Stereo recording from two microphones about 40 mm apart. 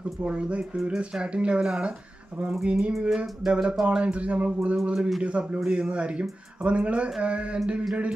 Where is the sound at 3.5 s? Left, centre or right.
Right.